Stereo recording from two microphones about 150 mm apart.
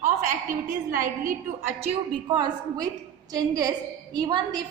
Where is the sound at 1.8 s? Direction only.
45° right (ahead or behind).